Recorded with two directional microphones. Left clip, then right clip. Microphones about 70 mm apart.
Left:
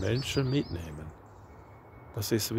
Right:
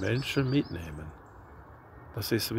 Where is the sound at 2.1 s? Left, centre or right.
Left.